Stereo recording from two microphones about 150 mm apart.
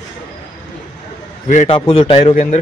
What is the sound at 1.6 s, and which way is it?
Speech, 35° left (ahead or behind).